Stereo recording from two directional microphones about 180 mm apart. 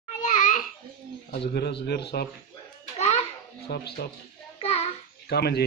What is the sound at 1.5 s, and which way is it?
Speech, 65° left (ahead or behind).